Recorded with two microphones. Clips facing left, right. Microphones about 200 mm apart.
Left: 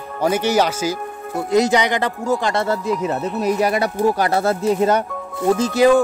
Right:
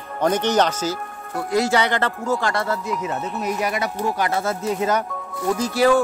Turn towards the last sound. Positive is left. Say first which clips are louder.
# left 4 dB
turn(degrees=20)  # may be behind; listen again after turning